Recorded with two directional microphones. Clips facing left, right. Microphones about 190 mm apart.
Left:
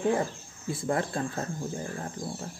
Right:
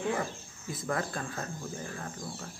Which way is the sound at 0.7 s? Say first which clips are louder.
Left 4 dB; 30° left (ahead or behind).